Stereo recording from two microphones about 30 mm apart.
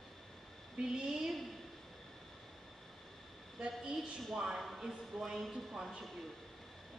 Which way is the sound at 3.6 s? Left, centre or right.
Right.